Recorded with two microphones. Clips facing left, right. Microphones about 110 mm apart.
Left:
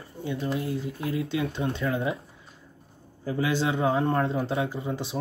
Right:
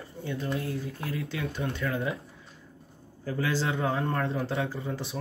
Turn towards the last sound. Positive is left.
turn(degrees=25)  # may be behind; listen again after turning